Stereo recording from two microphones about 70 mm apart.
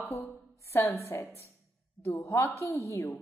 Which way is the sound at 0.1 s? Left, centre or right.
Left.